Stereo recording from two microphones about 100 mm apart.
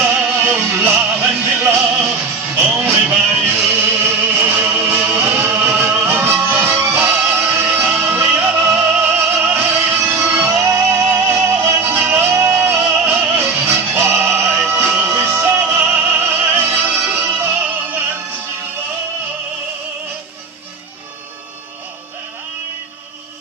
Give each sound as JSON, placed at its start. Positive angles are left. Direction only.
{"t": 0.0, "sound": "music", "side_deg": -15}
{"t": 12.5, "sound": "music", "side_deg": -15}